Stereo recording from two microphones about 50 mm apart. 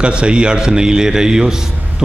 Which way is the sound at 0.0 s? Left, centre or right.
Centre.